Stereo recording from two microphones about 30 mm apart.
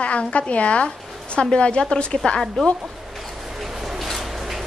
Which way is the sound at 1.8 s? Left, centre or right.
Left.